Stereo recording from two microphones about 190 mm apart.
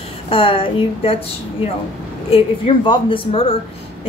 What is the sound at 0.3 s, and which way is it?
Speech, 30° left (ahead or behind).